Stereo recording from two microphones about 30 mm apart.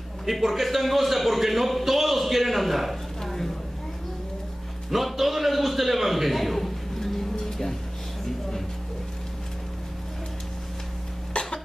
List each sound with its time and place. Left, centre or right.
0.2 s a man's voice: centre
3.2 s a sound: centre
4.9 s a man's voice: centre
11.3 s cough: left